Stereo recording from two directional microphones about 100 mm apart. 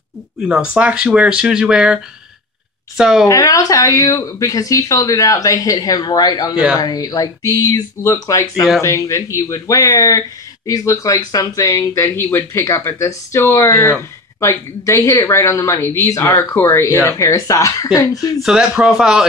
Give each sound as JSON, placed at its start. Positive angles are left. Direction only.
{"t": 0.4, "sound": "speech", "side_deg": -10}
{"t": 3.0, "sound": "a woman's voice", "side_deg": -5}
{"t": 3.3, "sound": "speech", "side_deg": 35}
{"t": 6.5, "sound": "speech", "side_deg": -10}
{"t": 6.8, "sound": "speech", "side_deg": 40}
{"t": 18.4, "sound": "speech", "side_deg": -5}